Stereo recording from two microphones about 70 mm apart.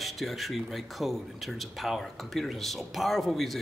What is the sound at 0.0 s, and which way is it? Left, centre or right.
Speech, centre.